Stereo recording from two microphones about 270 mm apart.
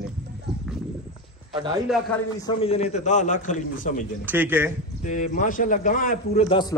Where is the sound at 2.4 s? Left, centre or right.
Left.